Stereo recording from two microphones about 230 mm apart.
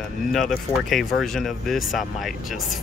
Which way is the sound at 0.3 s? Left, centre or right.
Centre.